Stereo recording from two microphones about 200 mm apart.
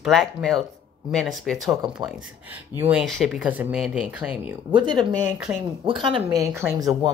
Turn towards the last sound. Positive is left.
turn(degrees=-20)  # may be behind; listen again after turning